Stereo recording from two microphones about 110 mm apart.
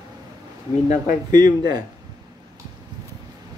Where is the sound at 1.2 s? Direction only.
40° right (ahead or behind).